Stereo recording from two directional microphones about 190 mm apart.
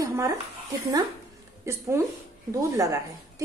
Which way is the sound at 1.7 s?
15° right (ahead or behind).